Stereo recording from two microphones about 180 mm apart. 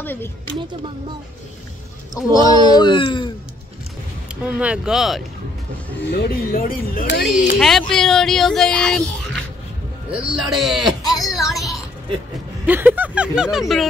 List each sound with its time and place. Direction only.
0.0 s speech: 10° left (ahead or behind)
2.4 s speech: 25° right (ahead or behind)
2.7 s speech: 25° left (ahead or behind)
4.4 s speech: 5° right (ahead or behind)
6.1 s speech: 55° left (ahead or behind)
7.5 s speech: centre (ahead or behind)
11.0 s a sound: 20° left (ahead or behind)
11.2 s a sound: centre (ahead or behind)
12.6 s speech: 10° right (ahead or behind)